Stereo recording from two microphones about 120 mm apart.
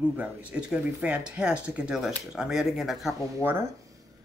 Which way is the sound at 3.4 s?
20° right (ahead or behind).